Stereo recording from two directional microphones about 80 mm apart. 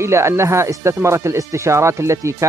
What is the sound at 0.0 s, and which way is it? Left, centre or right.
Speech, right.